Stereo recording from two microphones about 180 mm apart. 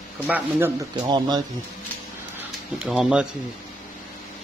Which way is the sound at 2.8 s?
5° right (ahead or behind).